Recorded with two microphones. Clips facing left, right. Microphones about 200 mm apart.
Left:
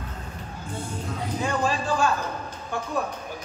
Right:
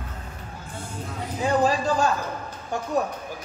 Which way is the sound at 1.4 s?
40° right (ahead or behind).